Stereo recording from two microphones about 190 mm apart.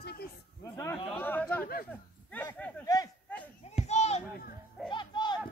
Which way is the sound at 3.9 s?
35° left (ahead or behind).